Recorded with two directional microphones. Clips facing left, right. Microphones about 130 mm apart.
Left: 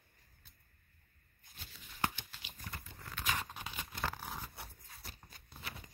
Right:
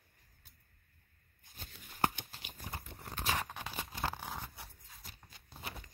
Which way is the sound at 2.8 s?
65° right (ahead or behind).